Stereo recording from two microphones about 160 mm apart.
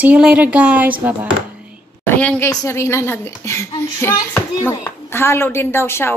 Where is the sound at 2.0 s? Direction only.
15° left (ahead or behind).